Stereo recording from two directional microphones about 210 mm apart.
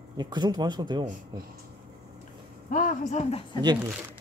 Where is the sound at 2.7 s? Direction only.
40° left (ahead or behind).